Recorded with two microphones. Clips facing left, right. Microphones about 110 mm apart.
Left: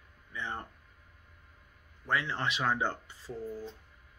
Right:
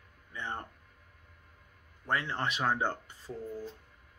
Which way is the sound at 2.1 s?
40° right (ahead or behind).